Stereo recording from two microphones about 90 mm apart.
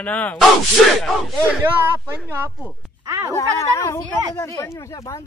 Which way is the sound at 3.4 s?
35° left (ahead or behind).